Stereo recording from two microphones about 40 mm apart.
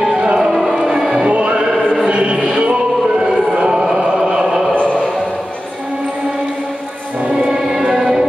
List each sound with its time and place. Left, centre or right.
0.1 s music: centre
1.2 s music: right
1.7 s music: centre
2.0 s music: right
4.3 s a sound: centre
7.2 s music: centre